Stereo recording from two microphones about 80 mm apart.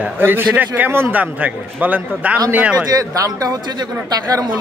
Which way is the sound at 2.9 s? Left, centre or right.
Right.